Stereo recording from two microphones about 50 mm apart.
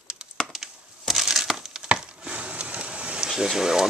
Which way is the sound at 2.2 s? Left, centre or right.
Right.